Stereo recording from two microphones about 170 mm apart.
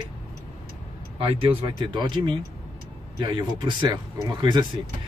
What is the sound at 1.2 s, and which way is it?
Speech, 30° right (ahead or behind).